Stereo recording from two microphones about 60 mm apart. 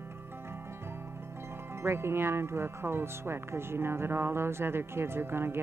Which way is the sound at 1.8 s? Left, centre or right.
Right.